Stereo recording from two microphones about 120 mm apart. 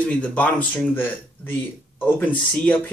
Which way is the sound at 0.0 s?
10° left (ahead or behind).